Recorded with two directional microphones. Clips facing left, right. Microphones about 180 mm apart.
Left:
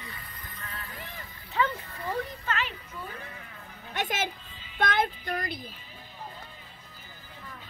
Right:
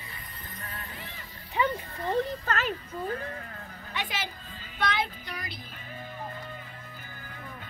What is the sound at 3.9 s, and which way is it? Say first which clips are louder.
Speech: left 4 dB; 45° left (ahead or behind).